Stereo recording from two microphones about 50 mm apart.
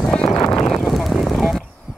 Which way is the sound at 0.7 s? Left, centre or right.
Centre.